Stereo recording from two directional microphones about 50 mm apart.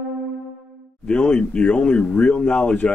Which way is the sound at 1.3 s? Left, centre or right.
Left.